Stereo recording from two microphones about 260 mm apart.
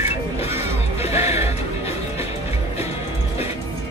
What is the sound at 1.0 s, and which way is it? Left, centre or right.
Music, left.